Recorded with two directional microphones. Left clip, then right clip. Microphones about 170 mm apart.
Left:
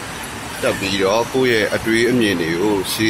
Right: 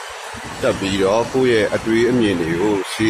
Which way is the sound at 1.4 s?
5° right (ahead or behind).